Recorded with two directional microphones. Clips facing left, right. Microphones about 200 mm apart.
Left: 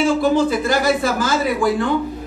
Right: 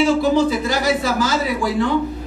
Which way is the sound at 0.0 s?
50° left (ahead or behind).